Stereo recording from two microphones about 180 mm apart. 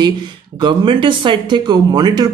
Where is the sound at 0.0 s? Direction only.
25° right (ahead or behind).